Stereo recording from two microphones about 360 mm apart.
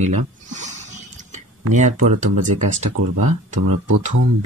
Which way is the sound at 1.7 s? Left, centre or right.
Centre.